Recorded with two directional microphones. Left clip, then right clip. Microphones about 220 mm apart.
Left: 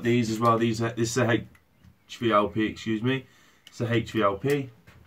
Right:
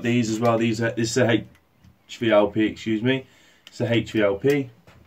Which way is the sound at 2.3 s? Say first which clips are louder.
Right 5 dB; 25° right (ahead or behind).